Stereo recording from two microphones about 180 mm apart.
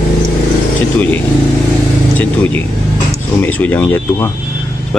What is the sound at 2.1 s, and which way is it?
Speech, 10° left (ahead or behind).